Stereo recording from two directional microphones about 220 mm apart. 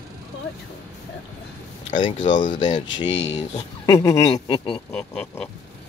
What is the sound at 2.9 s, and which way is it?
Speech, 55° left (ahead or behind).